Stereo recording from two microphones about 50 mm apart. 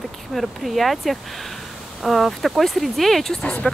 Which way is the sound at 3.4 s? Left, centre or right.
Centre.